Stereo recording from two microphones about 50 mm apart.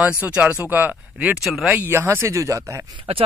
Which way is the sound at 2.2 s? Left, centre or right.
Right.